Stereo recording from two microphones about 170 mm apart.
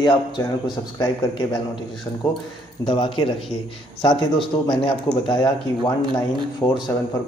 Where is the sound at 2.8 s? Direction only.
30° left (ahead or behind).